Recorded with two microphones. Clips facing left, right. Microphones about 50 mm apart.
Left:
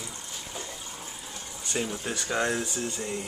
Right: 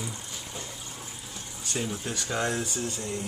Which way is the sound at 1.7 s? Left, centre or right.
Centre.